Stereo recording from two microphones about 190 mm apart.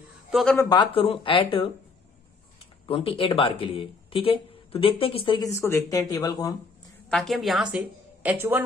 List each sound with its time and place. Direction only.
0.3 s a man's voice: centre (ahead or behind)
0.6 s speech: 20° left (ahead or behind)
2.9 s speech: 30° left (ahead or behind)
5.5 s speech: 15° left (ahead or behind)
7.1 s a woman's voice: centre (ahead or behind)